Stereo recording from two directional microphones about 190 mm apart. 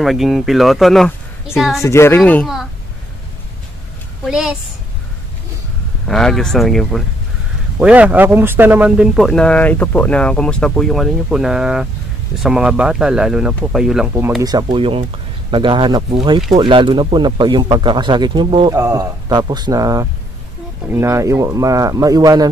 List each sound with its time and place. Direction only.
0.0 s speech: centre (ahead or behind)
1.8 s speech: 15° left (ahead or behind)
4.2 s speech: 5° right (ahead or behind)
6.0 s speech: 5° left (ahead or behind)
14.4 s speech: 25° right (ahead or behind)